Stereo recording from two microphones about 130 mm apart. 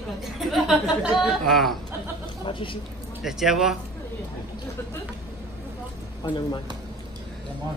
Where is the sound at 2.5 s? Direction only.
40° left (ahead or behind).